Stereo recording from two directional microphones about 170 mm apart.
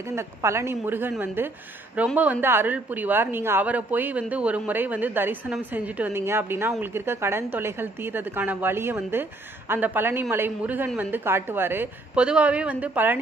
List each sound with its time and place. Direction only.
0.0 s a woman's voice: 15° right (ahead or behind)